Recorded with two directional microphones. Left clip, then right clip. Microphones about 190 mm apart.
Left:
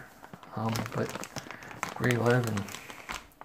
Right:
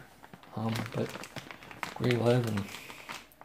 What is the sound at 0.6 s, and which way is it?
Speech, 35° left (ahead or behind).